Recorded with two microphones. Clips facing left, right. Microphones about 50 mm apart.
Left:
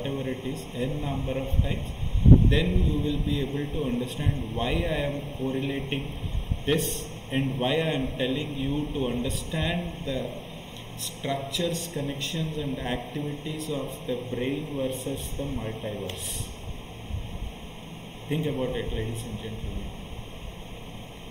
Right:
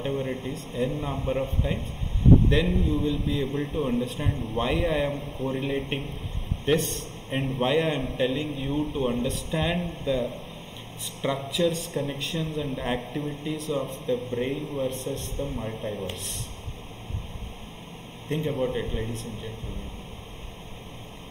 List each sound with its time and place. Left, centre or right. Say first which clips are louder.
0.0 s a sound: right 2 dB; centre
0.6 s a man's voice: right 2 dB; centre
11.2 s a man's voice: right 4 dB; centre
18.3 s a man's voice: right 1 dB; centre